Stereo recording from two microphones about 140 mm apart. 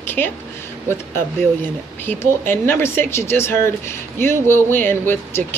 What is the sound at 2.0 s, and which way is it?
Speech, 15° left (ahead or behind).